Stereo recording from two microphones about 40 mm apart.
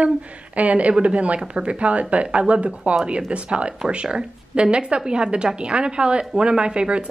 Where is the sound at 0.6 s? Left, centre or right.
Right.